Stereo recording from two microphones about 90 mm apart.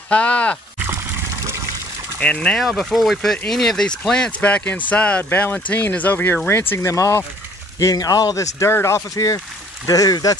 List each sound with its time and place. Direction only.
0.1 s speech: 15° left (ahead or behind)
0.7 s water: 25° right (ahead or behind)
2.1 s speech: 10° left (ahead or behind)
2.6 s speech: centre (ahead or behind); by 6.6 s 20° left (ahead or behind)
6.7 s speech: 35° left (ahead or behind)